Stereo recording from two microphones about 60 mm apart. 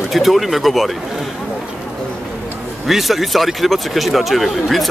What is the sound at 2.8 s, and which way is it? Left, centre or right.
Speech, centre.